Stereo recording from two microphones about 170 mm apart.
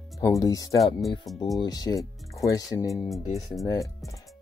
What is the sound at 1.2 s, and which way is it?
Speech, centre (ahead or behind).